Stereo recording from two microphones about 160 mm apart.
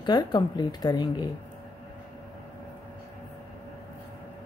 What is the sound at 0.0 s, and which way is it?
Speech, 25° left (ahead or behind).